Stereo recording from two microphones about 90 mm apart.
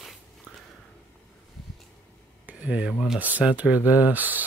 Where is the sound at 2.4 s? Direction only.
15° right (ahead or behind).